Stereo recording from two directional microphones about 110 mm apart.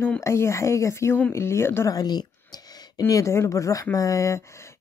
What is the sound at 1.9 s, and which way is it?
Speech, 40° left (ahead or behind).